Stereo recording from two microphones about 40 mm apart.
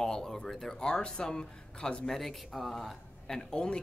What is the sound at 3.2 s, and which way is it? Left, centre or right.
Speech, centre.